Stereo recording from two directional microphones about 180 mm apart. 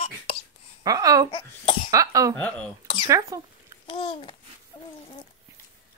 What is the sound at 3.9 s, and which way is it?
Babbling, 30° left (ahead or behind).